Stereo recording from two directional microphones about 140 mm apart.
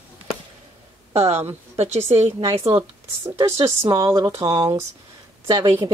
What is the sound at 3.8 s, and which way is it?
Speech, 20° right (ahead or behind).